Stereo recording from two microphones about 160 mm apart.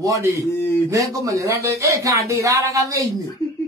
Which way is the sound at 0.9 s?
20° right (ahead or behind).